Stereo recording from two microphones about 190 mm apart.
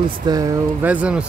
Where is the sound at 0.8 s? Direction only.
5° right (ahead or behind).